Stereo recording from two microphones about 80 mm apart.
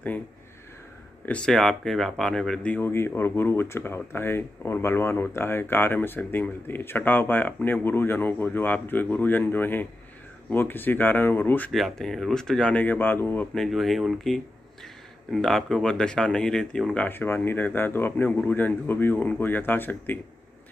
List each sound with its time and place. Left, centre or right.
1.2 s speech: centre
1.5 s speech: centre
2.7 s speech: left
11.7 s speech: centre; by 13.5 s left
13.6 s speech: centre
17.1 s speech: left